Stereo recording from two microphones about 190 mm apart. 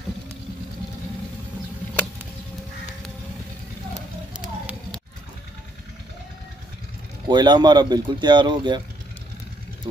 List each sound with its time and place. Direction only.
7.2 s speech: 25° right (ahead or behind)